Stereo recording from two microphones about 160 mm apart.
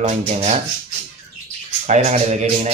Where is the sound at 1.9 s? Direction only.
45° right (ahead or behind).